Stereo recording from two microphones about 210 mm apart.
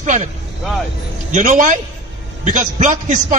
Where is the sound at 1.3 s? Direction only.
35° right (ahead or behind).